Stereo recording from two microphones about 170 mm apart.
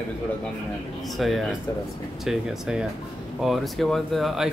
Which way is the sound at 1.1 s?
Centre (ahead or behind).